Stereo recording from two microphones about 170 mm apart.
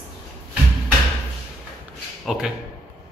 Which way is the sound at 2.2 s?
Centre (ahead or behind).